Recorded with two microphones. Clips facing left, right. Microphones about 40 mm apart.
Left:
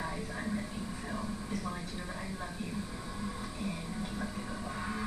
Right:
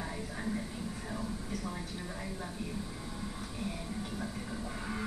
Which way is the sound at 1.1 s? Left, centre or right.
Centre.